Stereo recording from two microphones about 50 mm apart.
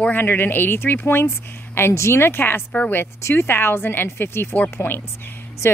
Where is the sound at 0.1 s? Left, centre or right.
Left.